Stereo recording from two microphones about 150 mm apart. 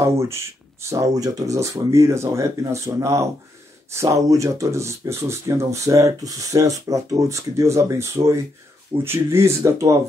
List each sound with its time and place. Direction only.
0.0 s speech: 20° right (ahead or behind)